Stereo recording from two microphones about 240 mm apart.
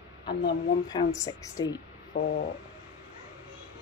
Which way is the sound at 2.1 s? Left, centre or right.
Left.